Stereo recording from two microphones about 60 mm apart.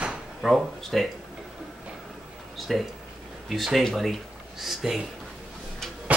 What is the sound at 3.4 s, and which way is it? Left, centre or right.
Speech, centre.